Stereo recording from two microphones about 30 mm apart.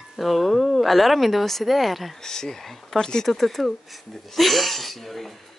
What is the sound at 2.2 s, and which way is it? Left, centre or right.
Speech, centre.